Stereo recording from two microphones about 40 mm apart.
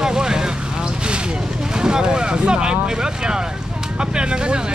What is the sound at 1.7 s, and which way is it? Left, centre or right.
Speech, centre.